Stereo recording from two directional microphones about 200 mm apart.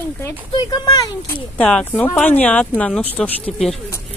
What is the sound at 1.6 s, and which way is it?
A woman's voice, 5° left (ahead or behind).